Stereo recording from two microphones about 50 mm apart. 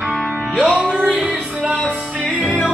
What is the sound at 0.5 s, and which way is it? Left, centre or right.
Music, right.